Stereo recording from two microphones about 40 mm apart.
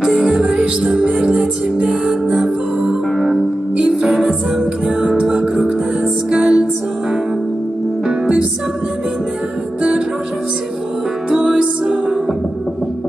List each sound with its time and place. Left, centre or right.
0.0 s music: centre
1.1 s music: right
2.3 s music: centre
4.1 s music: centre
11.2 s music: right